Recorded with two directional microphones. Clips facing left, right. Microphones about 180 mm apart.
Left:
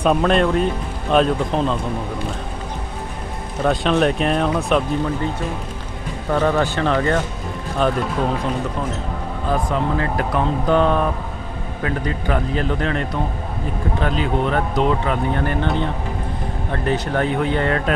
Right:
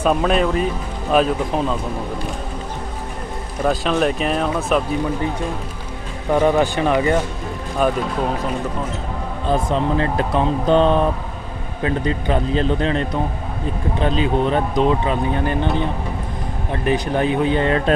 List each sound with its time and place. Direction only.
0.0 s speech: centre (ahead or behind)
3.6 s speech: centre (ahead or behind)
6.3 s speech: 15° right (ahead or behind)
9.5 s speech: 25° right (ahead or behind)
16.8 s speech: 15° right (ahead or behind)